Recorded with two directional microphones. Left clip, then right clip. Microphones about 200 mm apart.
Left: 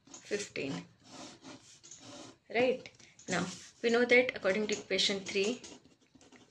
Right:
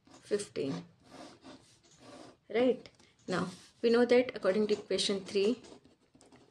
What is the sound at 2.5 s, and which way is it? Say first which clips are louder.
A woman's voice: right 1 dB; 55° right (ahead or behind).